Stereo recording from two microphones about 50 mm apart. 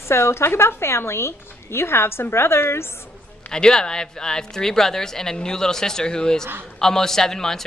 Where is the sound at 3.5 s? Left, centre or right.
Centre.